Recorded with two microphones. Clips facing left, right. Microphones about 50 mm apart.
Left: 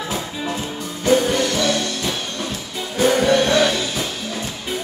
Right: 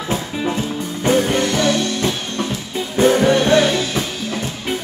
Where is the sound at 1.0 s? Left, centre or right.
Right.